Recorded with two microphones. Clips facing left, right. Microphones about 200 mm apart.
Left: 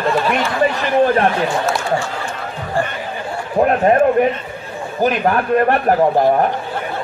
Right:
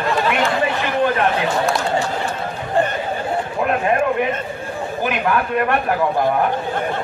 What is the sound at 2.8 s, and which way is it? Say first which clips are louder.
Chatter: right 2 dB; 20° right (ahead or behind).